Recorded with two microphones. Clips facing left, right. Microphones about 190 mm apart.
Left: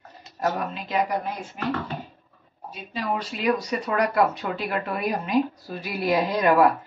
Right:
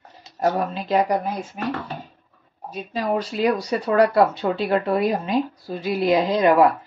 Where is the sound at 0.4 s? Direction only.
35° right (ahead or behind).